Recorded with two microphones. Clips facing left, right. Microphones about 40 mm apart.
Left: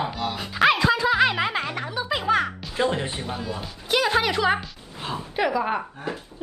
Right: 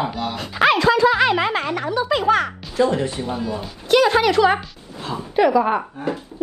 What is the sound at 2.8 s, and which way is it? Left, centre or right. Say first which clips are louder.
Speech: right 6 dB; left.